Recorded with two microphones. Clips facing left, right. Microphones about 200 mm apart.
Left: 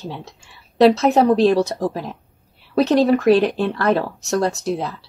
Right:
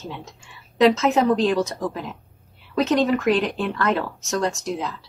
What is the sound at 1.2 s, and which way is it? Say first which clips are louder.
Speech: left 4 dB; 35° left (ahead or behind).